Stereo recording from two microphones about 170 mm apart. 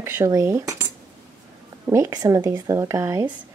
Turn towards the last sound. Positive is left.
turn(degrees=-15)  # may be behind; listen again after turning